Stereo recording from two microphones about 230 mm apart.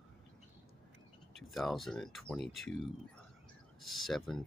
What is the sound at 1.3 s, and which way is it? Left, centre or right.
Speech, centre.